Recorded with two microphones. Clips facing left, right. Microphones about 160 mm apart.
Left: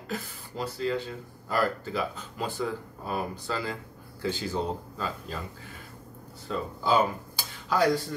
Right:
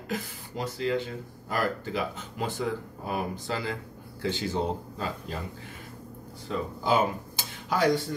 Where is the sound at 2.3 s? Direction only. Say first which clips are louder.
Right 1 dB; 20° right (ahead or behind).